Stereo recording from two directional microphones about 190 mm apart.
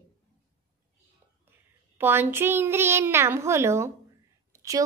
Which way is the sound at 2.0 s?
10° right (ahead or behind).